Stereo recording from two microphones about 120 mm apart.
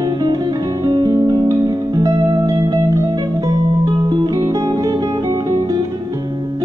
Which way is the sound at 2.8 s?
25° right (ahead or behind).